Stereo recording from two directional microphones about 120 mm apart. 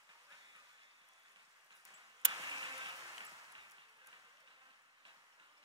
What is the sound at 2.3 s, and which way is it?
Insect, 40° right (ahead or behind).